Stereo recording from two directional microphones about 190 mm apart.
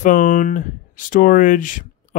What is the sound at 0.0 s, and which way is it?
Speech, 45° left (ahead or behind).